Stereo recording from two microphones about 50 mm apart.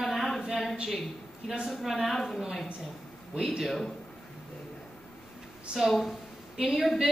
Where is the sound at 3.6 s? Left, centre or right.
Centre.